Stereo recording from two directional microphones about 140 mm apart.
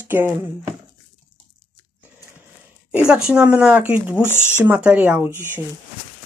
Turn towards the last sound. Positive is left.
turn(degrees=-15)  # may be behind; listen again after turning